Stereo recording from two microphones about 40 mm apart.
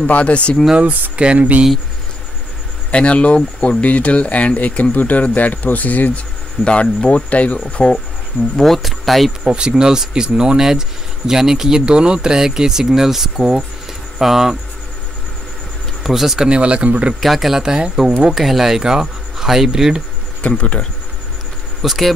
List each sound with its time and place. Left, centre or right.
0.0 s speech: left
1.1 s speech: right
2.9 s speech: left
6.6 s speech: left
7.6 s speech: centre
8.5 s speech: centre
9.4 s speech: right
11.8 s speech: right
16.0 s speech: centre
16.4 s speech: right
17.2 s speech: centre
20.4 s speech: left
21.8 s speech: centre